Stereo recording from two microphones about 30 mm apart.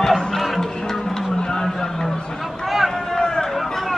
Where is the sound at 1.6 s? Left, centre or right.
Centre.